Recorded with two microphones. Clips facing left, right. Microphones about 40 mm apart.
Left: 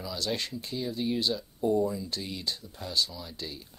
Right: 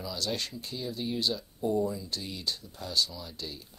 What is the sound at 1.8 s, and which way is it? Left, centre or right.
Speech, centre.